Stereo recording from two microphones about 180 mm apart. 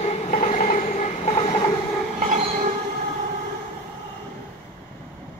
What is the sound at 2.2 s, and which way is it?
Train, 45° right (ahead or behind).